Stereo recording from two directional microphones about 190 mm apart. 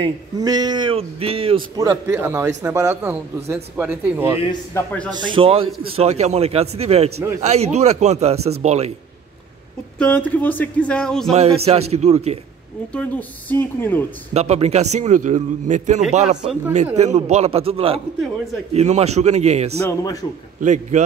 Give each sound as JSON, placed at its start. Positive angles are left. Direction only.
{"t": 0.0, "sound": "speech", "side_deg": -20}
{"t": 1.8, "sound": "a man's voice", "side_deg": -15}
{"t": 4.7, "sound": "speech", "side_deg": 15}
{"t": 5.2, "sound": "a man's voice", "side_deg": -25}
{"t": 9.9, "sound": "speech", "side_deg": 10}
{"t": 11.3, "sound": "a man's voice", "side_deg": -35}
{"t": 12.9, "sound": "speech", "side_deg": 10}
{"t": 14.3, "sound": "a man's voice", "side_deg": -35}
{"t": 20.0, "sound": "speech", "side_deg": 15}
{"t": 20.6, "sound": "a man's voice", "side_deg": -40}